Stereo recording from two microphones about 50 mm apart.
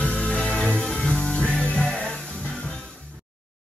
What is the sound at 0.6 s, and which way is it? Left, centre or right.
Music, centre.